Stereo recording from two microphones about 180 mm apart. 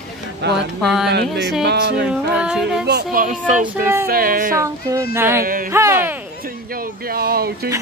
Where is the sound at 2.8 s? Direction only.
60° right (ahead or behind).